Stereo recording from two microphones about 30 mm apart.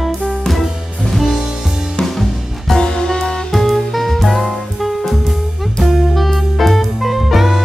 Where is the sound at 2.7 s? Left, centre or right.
Left.